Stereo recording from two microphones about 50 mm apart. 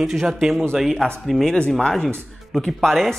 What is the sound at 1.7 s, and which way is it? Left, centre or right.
Speech, centre.